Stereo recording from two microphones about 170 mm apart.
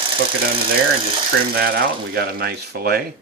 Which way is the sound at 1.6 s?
65° right (ahead or behind).